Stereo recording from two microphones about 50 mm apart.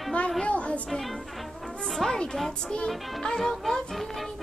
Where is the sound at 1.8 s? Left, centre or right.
Centre.